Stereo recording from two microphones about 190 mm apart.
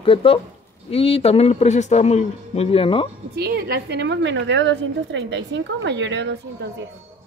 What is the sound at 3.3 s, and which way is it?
A woman's voice, 55° right (ahead or behind).